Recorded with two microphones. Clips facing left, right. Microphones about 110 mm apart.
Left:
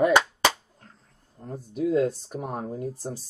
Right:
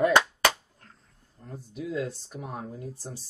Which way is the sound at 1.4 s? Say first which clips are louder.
Left 9 dB; 45° left (ahead or behind).